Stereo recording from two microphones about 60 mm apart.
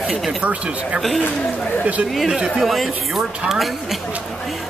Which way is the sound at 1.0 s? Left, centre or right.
Centre.